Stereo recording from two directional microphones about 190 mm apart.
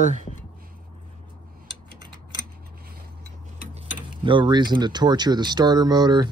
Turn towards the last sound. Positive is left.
turn(degrees=-20)  # may be behind; listen again after turning